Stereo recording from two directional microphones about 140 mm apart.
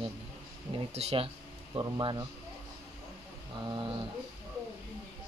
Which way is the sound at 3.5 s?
35° right (ahead or behind).